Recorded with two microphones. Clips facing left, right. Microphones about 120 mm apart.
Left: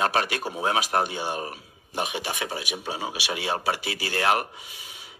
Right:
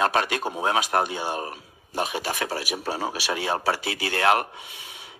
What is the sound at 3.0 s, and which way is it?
A man's voice, 40° right (ahead or behind).